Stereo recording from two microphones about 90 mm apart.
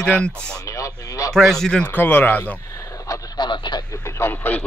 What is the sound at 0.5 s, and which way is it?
Radio, 35° left (ahead or behind).